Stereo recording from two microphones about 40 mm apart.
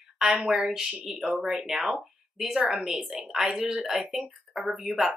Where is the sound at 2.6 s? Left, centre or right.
Right.